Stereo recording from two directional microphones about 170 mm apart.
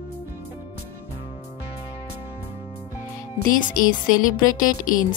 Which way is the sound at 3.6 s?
50° left (ahead or behind).